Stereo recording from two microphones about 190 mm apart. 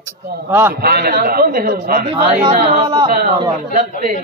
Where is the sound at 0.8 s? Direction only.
55° right (ahead or behind).